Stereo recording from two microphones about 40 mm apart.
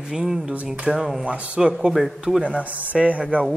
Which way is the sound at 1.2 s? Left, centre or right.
Right.